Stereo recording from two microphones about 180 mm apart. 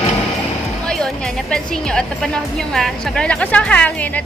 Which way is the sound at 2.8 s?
5° left (ahead or behind).